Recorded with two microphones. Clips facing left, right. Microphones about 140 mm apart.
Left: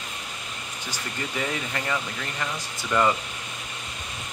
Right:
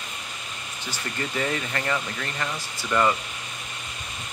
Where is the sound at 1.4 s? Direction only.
10° left (ahead or behind).